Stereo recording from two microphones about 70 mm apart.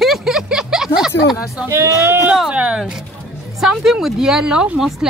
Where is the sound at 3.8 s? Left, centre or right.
Centre.